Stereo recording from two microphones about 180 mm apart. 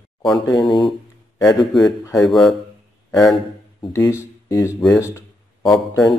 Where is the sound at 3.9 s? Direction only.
15° left (ahead or behind).